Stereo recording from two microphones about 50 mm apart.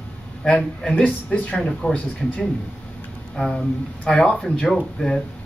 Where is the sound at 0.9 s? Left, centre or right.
Left.